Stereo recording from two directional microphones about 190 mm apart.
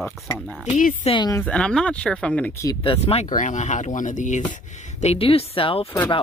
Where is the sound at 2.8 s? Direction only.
30° left (ahead or behind).